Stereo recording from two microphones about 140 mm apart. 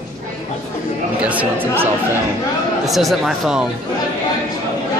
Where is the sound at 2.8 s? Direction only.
Centre (ahead or behind).